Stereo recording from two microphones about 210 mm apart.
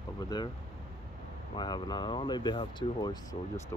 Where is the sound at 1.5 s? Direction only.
20° left (ahead or behind).